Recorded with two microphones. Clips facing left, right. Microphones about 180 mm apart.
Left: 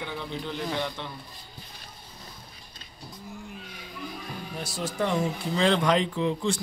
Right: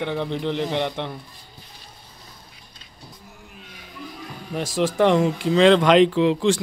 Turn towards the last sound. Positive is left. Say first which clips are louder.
# right 8 dB
turn(degrees=-90)